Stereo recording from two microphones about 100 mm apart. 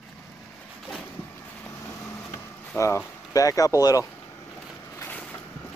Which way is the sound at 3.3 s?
35° left (ahead or behind).